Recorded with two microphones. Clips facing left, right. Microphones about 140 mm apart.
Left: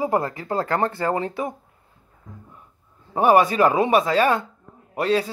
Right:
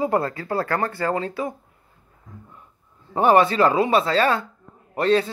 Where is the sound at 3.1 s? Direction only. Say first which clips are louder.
Even; 10° left (ahead or behind).